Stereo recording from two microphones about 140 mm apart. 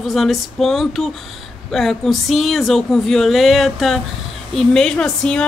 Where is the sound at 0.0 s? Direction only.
Centre (ahead or behind).